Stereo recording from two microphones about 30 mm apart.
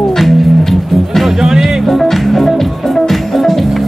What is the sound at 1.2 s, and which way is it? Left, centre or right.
Music, centre.